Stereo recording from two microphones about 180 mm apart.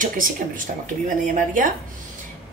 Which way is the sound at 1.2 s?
45° right (ahead or behind).